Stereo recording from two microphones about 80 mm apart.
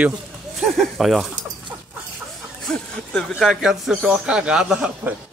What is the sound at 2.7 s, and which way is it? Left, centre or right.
Speech, centre.